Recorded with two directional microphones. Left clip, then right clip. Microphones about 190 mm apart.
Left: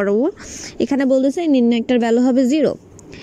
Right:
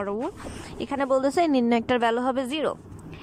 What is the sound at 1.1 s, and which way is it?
Speech, 20° left (ahead or behind).